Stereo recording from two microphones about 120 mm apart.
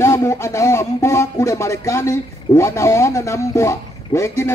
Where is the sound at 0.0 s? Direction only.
25° left (ahead or behind).